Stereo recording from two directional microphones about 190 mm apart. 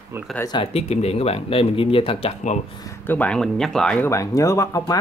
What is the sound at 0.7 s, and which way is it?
Speech, 35° left (ahead or behind).